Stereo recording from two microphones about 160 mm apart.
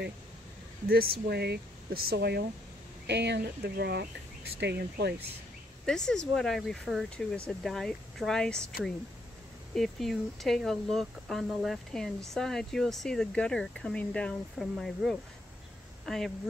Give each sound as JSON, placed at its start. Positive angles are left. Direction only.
{"t": 0.8, "sound": "speech", "side_deg": -70}
{"t": 5.9, "sound": "speech", "side_deg": 5}
{"t": 9.8, "sound": "speech", "side_deg": 0}